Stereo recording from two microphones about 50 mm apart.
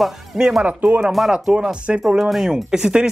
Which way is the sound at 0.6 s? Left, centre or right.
Right.